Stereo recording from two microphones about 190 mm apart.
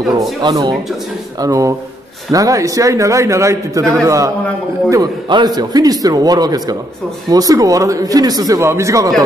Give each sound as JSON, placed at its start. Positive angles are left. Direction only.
{"t": 0.4, "sound": "a man's voice", "side_deg": -20}